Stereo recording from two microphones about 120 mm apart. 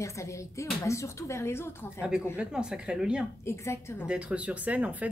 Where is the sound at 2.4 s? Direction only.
5° right (ahead or behind).